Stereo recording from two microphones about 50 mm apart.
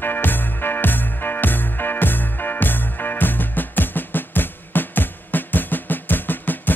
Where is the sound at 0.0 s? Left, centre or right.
Left.